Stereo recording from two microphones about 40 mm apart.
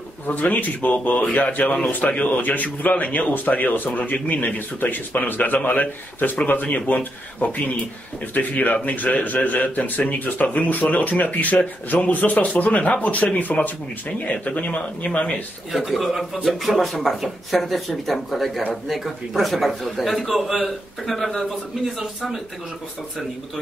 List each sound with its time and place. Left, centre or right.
0.3 s a man's voice: left
15.7 s a man's voice: centre
21.0 s speech: centre
21.8 s speech: centre